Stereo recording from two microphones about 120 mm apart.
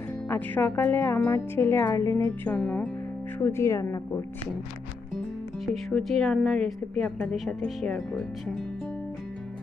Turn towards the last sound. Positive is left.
turn(degrees=5)  # may be behind; listen again after turning